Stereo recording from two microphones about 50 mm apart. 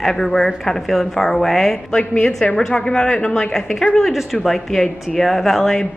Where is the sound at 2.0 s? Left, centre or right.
Left.